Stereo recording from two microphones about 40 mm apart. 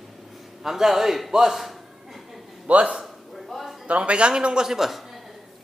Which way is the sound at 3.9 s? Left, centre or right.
Right.